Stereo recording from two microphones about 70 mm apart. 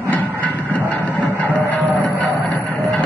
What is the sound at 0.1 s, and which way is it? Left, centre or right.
Music, left.